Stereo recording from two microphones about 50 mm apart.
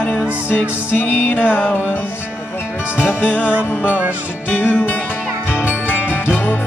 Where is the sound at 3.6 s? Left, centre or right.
Left.